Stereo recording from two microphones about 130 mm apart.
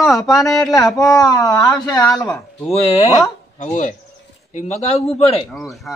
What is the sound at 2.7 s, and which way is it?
Speech, 55° left (ahead or behind).